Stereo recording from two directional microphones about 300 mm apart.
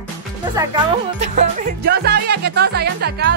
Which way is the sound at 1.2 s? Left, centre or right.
Right.